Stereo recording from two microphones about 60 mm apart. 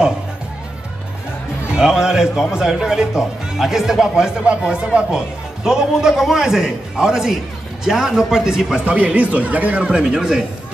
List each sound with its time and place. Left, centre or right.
1.7 s speech: centre
8.8 s speech: right